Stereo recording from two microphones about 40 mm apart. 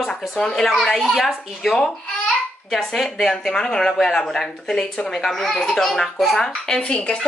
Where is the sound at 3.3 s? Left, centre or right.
Centre.